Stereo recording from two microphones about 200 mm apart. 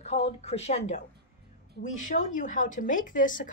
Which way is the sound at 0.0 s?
35° left (ahead or behind).